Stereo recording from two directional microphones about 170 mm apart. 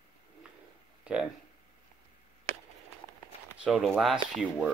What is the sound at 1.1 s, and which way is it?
Speech, 10° right (ahead or behind).